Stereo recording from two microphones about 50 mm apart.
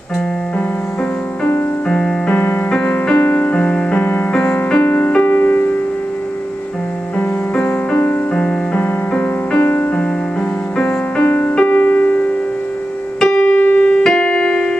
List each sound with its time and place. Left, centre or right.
1.9 s music: centre
2.3 s music: left
3.2 s music: left
7.2 s music: left
9.6 s music: left
11.2 s music: left
13.4 s music: left
13.8 s keyboard: centre